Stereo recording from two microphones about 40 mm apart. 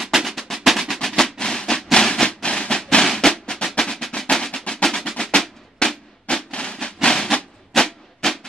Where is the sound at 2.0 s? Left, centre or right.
Centre.